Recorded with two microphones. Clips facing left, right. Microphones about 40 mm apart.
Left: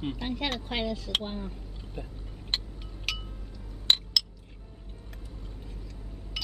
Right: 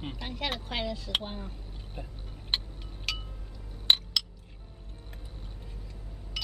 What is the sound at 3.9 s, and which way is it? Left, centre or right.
Chink, centre.